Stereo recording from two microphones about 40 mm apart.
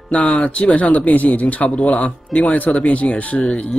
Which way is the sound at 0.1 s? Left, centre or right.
Left.